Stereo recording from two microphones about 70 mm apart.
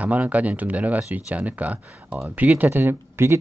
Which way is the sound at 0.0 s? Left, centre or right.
Right.